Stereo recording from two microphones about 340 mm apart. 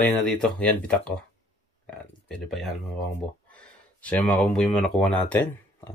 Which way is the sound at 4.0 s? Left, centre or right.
Centre.